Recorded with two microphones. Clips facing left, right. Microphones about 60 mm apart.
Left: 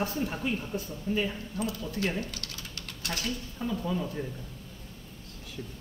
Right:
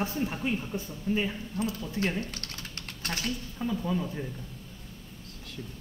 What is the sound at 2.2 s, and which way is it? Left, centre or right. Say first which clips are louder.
Typing: even; right.